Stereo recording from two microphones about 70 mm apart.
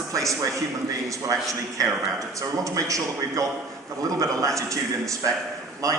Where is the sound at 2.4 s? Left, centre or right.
Right.